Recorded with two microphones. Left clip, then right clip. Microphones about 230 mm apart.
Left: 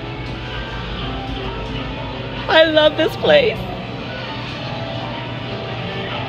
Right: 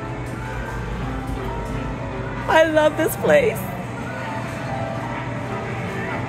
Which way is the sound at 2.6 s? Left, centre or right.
Centre.